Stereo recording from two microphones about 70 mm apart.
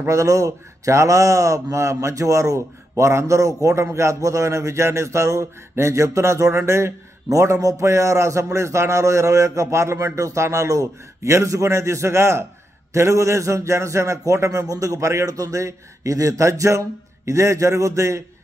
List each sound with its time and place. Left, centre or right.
0.0 s a man's voice: right